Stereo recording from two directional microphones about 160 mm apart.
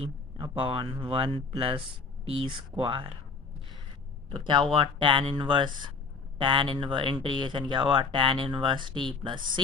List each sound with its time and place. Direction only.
0.0 s speech: 35° right (ahead or behind)
4.5 s speech: 30° right (ahead or behind)